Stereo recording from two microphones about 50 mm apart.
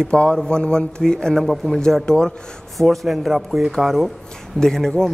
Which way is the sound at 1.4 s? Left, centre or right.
Centre.